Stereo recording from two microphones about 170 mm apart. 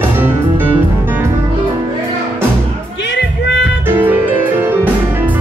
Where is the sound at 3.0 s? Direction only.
90° left.